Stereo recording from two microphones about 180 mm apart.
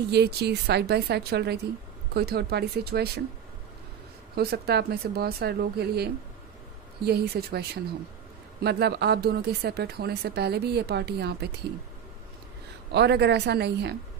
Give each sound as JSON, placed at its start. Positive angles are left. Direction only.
{"t": 0.1, "sound": "speech", "side_deg": -65}
{"t": 4.4, "sound": "speech", "side_deg": -60}
{"t": 7.1, "sound": "speech", "side_deg": -60}
{"t": 12.9, "sound": "a woman's voice", "side_deg": -70}